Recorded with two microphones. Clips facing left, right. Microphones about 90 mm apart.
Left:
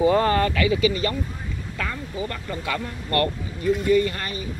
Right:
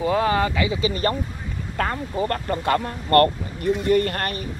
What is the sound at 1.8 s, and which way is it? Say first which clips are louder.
Speech: right 6 dB; 55° right (ahead or behind).